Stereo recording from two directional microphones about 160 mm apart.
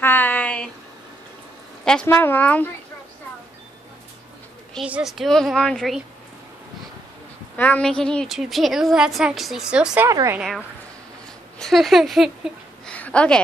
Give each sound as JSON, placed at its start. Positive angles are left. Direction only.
{"t": 0.0, "sound": "a sound", "side_deg": 10}
{"t": 1.9, "sound": "speech", "side_deg": 10}
{"t": 4.7, "sound": "a woman's voice", "side_deg": -5}
{"t": 7.5, "sound": "a woman's voice", "side_deg": 10}
{"t": 10.0, "sound": "a woman's voice", "side_deg": -20}
{"t": 11.5, "sound": "a woman's voice", "side_deg": 0}